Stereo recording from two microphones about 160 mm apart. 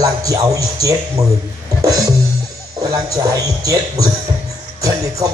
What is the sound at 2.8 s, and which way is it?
Speech, 20° right (ahead or behind).